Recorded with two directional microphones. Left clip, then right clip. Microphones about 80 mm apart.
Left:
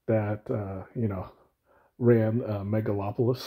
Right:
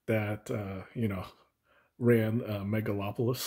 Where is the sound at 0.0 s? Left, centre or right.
Centre.